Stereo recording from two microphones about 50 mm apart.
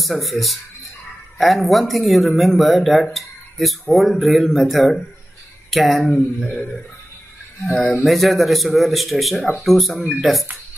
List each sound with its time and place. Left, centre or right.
0.0 s speech: centre
6.0 s speech: left
7.9 s speech: centre